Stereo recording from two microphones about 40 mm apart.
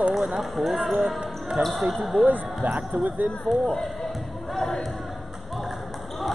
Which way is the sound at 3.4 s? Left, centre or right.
Left.